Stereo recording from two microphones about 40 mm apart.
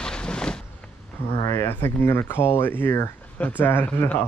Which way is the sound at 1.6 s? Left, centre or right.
Left.